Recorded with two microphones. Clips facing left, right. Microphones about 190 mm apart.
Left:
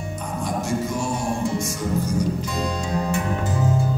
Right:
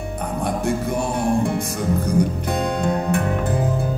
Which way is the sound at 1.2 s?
60° right (ahead or behind).